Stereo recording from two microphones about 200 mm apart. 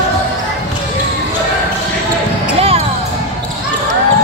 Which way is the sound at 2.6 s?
30° right (ahead or behind).